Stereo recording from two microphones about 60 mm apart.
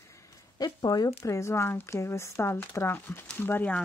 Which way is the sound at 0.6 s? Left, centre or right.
Left.